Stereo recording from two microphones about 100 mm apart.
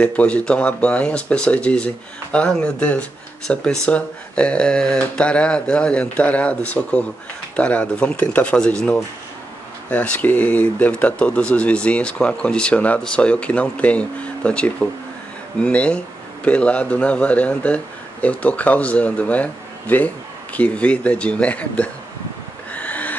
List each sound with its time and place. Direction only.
0.0 s speech: 15° left (ahead or behind)
22.7 s owl: 15° left (ahead or behind)